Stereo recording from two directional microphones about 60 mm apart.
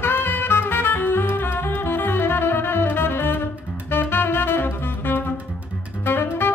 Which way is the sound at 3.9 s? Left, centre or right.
Left.